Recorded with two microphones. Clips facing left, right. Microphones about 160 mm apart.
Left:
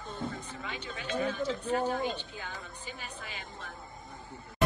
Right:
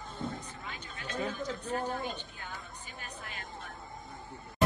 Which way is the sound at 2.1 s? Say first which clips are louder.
Left 3 dB; 90° left.